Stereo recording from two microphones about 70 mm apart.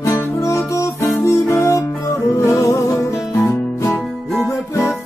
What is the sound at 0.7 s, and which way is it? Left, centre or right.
Music, left.